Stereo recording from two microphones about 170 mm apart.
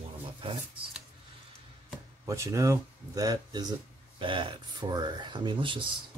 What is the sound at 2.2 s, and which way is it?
Speech, 15° right (ahead or behind).